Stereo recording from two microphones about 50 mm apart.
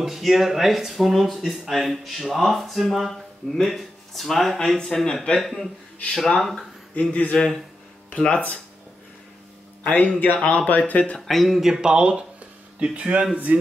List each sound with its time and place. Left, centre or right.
0.0 s speech: centre
5.4 s a man's voice: centre
8.2 s a man's voice: left
9.8 s a man's voice: left
11.1 s speech: centre; by 13.6 s right